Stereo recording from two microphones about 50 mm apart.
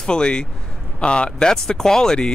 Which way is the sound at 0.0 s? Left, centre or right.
Centre.